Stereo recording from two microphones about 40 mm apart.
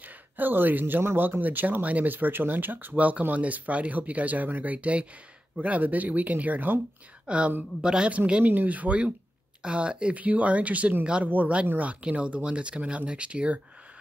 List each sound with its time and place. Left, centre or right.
0.4 s speech: right
2.9 s speech: right
4.7 s speech: right
7.2 s speech: right
7.8 s speech: centre
8.5 s speech: right